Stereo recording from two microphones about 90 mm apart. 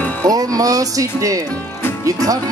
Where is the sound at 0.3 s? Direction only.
40° right (ahead or behind).